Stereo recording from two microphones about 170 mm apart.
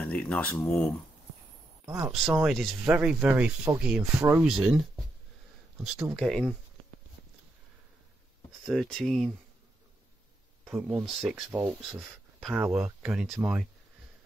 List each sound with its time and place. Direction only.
0.0 s speech: 5° left (ahead or behind)
1.9 s speech: 20° right (ahead or behind)
2.4 s speech: centre (ahead or behind)
6.1 s speech: centre (ahead or behind)
8.6 s speech: centre (ahead or behind)
10.6 s speech: 10° right (ahead or behind)